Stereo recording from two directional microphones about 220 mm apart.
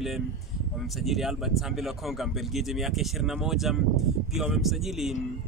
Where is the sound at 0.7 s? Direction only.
Centre (ahead or behind).